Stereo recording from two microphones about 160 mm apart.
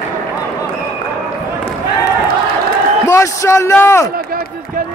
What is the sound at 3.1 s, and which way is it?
A man's voice, 15° left (ahead or behind).